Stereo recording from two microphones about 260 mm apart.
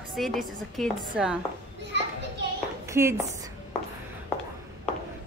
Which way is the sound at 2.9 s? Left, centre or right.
Centre.